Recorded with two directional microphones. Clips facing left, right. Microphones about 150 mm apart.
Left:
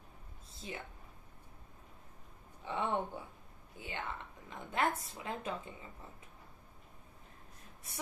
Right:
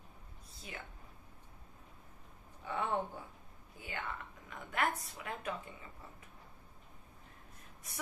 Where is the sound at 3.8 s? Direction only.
20° left (ahead or behind).